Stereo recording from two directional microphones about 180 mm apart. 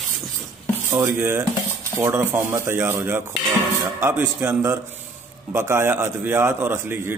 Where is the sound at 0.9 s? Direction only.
15° right (ahead or behind).